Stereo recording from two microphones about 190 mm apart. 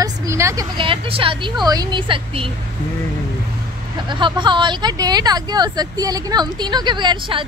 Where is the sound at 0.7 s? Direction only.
25° right (ahead or behind).